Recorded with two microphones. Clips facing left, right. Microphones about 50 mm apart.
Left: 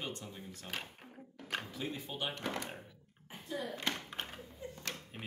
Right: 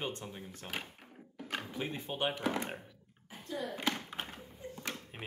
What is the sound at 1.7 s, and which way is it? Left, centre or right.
Speech, right.